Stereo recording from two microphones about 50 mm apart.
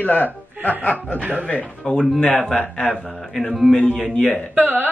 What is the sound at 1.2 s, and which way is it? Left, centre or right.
Speech, right.